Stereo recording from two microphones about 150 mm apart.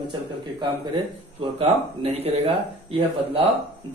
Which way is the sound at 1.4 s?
40° right (ahead or behind).